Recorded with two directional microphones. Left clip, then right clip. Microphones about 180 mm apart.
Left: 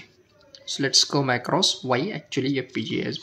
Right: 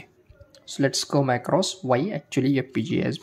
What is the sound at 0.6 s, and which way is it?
Speech, 30° right (ahead or behind).